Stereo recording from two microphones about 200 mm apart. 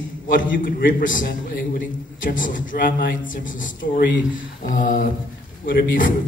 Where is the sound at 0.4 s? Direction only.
45° left (ahead or behind).